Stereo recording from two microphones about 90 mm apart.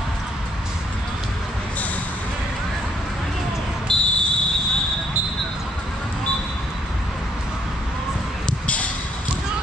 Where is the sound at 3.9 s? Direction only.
10° left (ahead or behind).